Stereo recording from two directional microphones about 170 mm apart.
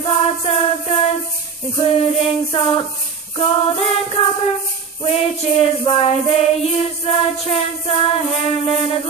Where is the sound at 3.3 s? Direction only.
35° left (ahead or behind).